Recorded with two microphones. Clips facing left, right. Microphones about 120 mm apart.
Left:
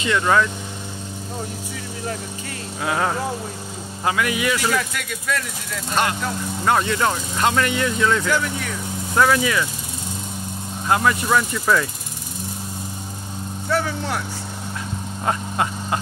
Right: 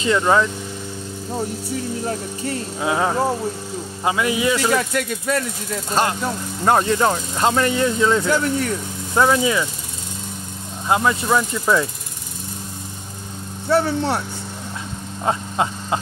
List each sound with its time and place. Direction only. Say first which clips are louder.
0.0 s speech: right 2 dB; 25° right (ahead or behind)
2.0 s speech: right 5 dB; 35° right (ahead or behind)
2.8 s speech: right 3 dB; 20° right (ahead or behind)
10.9 s speech: right 1 dB; 15° right (ahead or behind)
13.7 s speech: right 5 dB; 30° right (ahead or behind)
15.2 s speech: right 2 dB; 20° right (ahead or behind)